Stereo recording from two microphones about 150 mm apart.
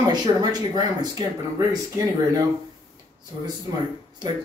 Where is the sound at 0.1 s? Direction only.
25° right (ahead or behind).